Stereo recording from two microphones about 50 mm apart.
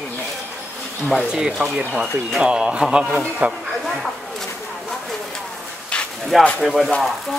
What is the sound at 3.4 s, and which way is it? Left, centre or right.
Speech, right.